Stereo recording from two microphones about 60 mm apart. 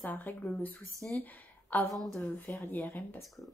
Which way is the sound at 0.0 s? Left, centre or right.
Left.